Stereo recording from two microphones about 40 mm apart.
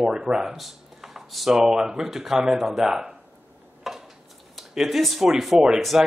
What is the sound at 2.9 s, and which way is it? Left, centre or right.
Speech, centre.